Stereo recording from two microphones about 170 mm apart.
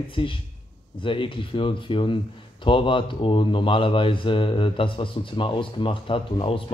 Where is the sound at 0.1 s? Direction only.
30° left (ahead or behind).